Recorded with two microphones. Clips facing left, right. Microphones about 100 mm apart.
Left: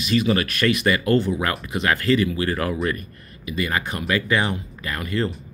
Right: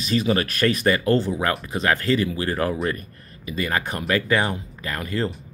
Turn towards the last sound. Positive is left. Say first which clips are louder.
# left 1 dB
turn(degrees=-35)  # may be behind; listen again after turning